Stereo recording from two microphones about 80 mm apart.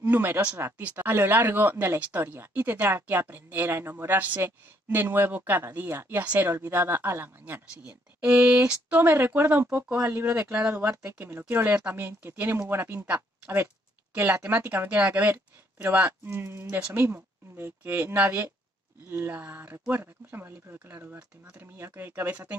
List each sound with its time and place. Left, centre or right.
0.0 s speech: right
7.8 s speech: centre